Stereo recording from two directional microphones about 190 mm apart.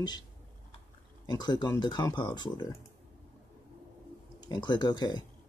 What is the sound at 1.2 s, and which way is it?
Speech, 20° left (ahead or behind).